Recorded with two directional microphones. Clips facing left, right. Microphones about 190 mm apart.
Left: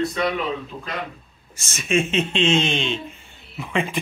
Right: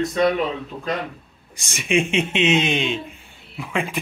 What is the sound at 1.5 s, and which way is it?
Speech, 15° right (ahead or behind).